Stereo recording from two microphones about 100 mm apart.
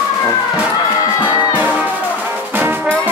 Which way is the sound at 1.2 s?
20° right (ahead or behind).